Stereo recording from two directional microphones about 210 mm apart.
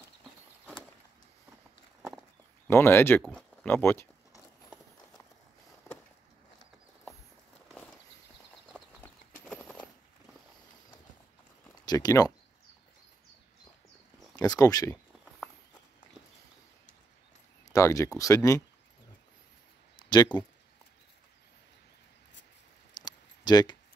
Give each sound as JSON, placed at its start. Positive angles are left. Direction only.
{"t": 2.7, "sound": "speech", "side_deg": 10}
{"t": 7.6, "sound": "walk", "side_deg": 5}
{"t": 8.6, "sound": "clip-clop", "side_deg": 5}
{"t": 11.8, "sound": "speech", "side_deg": 20}
{"t": 14.3, "sound": "speech", "side_deg": 20}
{"t": 17.6, "sound": "speech", "side_deg": 15}
{"t": 20.0, "sound": "a sound", "side_deg": 20}
{"t": 22.9, "sound": "a sound", "side_deg": 20}